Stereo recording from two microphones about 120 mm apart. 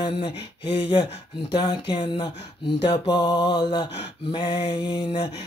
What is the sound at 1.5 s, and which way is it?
Speech, 40° left (ahead or behind).